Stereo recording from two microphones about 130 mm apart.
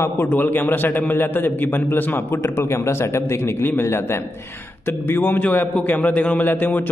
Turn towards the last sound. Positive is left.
turn(degrees=15)  # may be behind; listen again after turning